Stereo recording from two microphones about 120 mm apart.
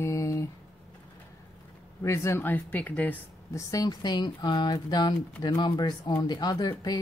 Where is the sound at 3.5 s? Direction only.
30° left (ahead or behind).